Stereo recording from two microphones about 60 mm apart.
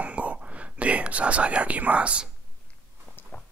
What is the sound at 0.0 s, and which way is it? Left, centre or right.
Whispering, right.